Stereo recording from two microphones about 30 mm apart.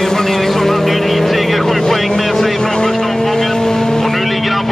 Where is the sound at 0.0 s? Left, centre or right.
Centre.